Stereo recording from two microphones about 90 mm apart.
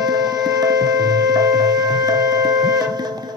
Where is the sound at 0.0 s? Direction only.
50° right (ahead or behind).